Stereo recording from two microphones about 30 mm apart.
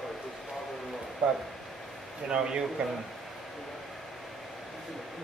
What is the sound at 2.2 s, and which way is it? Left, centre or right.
Speech, right.